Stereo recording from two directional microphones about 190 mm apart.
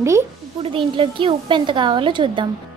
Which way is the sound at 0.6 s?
25° right (ahead or behind).